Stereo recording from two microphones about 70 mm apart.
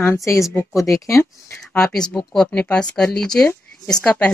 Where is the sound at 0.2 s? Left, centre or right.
Left.